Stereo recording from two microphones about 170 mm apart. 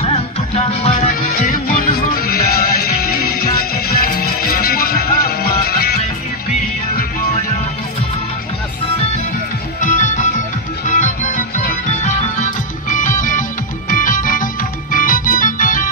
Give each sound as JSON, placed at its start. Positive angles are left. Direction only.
{"t": 1.2, "sound": "music", "side_deg": 50}
{"t": 9.8, "sound": "music", "side_deg": 45}